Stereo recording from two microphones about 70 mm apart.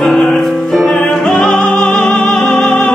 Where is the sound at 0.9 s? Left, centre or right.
Centre.